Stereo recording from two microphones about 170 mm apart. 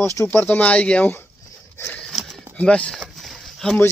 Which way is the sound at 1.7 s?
10° left (ahead or behind).